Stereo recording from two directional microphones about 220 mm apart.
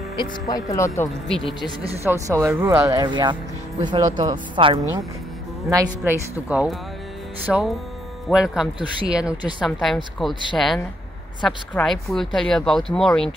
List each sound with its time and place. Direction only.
0.2 s speech: 15° left (ahead or behind)
2.0 s speech: 15° right (ahead or behind); by 13.3 s 5° left (ahead or behind)